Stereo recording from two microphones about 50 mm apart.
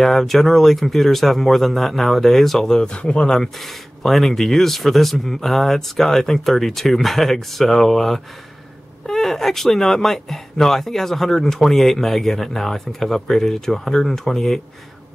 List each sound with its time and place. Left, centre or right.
0.0 s speech: centre
2.8 s speech: left
3.3 s speech: centre